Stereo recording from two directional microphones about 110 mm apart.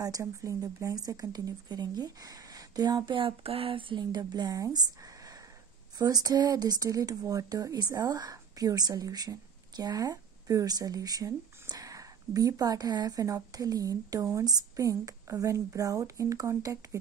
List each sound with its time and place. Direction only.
0.0 s speech: 30° right (ahead or behind)
3.2 s speech: 55° right (ahead or behind); by 17.0 s 30° right (ahead or behind)